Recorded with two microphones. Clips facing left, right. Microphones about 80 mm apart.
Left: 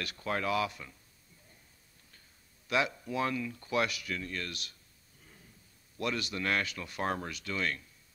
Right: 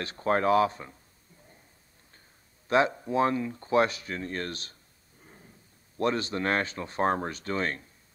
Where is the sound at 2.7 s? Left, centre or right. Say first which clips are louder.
Right 7 dB; right.